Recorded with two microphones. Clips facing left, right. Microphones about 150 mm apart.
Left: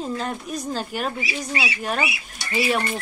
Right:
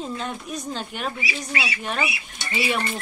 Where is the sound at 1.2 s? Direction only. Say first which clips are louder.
Left 2 dB; 30° left (ahead or behind).